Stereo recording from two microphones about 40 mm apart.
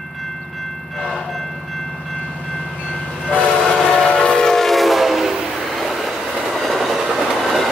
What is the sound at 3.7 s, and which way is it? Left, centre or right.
Train, centre.